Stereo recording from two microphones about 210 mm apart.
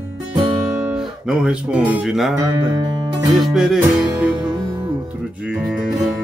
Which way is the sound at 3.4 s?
Centre (ahead or behind).